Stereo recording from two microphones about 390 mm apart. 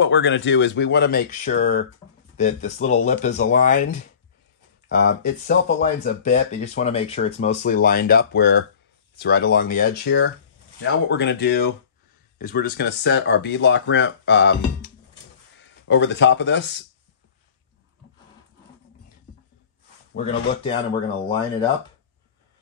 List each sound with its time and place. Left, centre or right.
0.0 s speech: left
15.9 s speech: left
20.2 s speech: centre